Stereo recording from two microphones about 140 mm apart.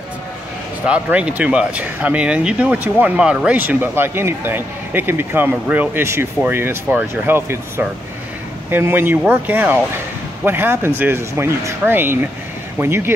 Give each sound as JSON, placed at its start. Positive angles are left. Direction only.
{"t": 0.8, "sound": "speech", "side_deg": -10}